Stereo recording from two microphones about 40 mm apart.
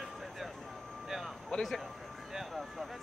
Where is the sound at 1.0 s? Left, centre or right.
Centre.